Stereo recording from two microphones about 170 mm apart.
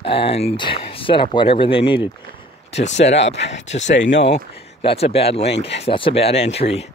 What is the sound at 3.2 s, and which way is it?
Speech, 90° left.